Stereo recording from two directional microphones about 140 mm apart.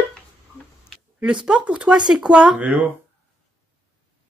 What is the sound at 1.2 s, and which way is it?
Speech, 5° right (ahead or behind).